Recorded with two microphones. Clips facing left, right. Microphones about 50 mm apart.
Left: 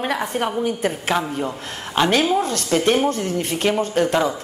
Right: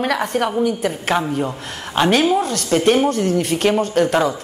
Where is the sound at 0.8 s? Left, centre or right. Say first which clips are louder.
Right 1 dB; left.